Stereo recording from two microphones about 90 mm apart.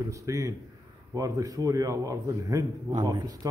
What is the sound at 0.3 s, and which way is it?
A man's voice, 40° right (ahead or behind).